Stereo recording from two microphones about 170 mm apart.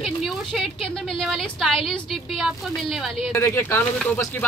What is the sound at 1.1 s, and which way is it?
Speech, centre (ahead or behind).